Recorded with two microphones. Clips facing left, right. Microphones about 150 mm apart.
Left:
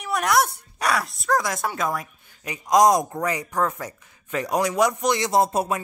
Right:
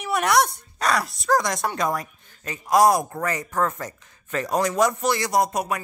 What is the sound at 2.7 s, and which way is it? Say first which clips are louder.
Speech: left 1 dB; 20° left (ahead or behind).